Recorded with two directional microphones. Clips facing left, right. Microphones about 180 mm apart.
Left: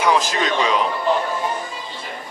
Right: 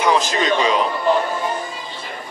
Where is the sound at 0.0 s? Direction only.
5° left (ahead or behind).